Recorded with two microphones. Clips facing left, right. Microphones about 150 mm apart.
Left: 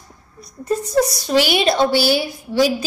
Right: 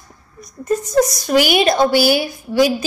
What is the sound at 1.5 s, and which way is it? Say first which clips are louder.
Speech: right 2 dB; 45° right (ahead or behind).